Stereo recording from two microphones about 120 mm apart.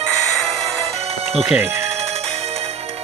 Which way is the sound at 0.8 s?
60° right (ahead or behind).